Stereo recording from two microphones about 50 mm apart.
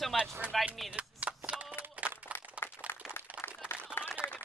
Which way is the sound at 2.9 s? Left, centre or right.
Left.